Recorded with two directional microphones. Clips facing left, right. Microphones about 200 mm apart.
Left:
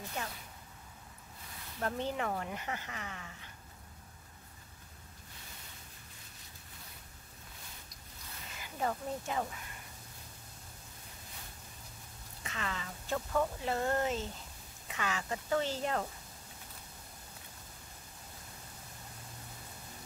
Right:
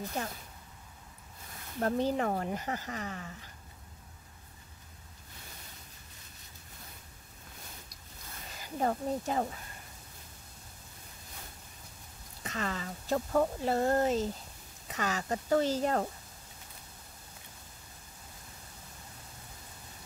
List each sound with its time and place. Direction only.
0.2 s speech: 35° right (ahead or behind)
1.8 s speech: 35° right (ahead or behind)
8.5 s speech: 40° right (ahead or behind)
12.4 s speech: 40° right (ahead or behind)